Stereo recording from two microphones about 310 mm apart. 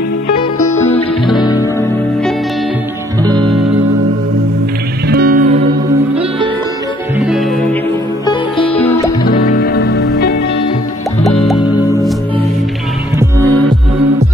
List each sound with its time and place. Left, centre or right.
0.4 s music: centre
3.2 s music: centre
5.0 s music: right
7.2 s music: centre
8.6 s music: centre
9.3 s music: left
13.2 s music: centre